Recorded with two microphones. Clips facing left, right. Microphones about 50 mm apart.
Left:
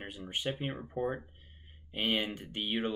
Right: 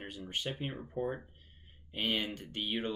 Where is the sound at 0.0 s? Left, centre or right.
Centre.